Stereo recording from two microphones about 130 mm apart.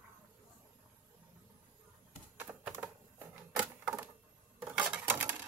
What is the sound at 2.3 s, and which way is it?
Typewriter, 10° right (ahead or behind).